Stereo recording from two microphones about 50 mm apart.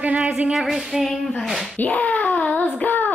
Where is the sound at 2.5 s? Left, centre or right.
Left.